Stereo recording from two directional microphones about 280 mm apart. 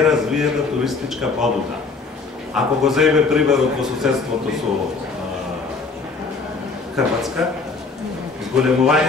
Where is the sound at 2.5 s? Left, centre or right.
Centre.